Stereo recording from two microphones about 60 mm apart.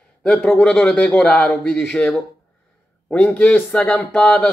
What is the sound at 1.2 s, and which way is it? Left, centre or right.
Speech, left.